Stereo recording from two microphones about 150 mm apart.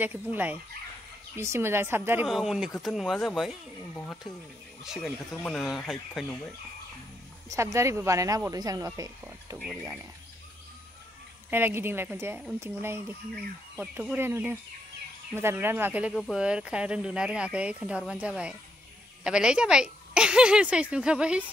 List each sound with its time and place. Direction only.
0.0 s speech: 10° right (ahead or behind)
2.2 s a woman's voice: centre (ahead or behind)
3.9 s speech: 10° left (ahead or behind)
5.3 s a woman's voice: 10° left (ahead or behind)
7.4 s speech: 20° right (ahead or behind)
11.5 s speech: 15° right (ahead or behind)
16.1 s a woman's voice: centre (ahead or behind)